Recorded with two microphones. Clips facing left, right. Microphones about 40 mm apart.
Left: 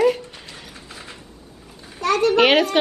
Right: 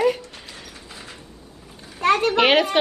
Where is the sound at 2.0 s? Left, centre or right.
Right.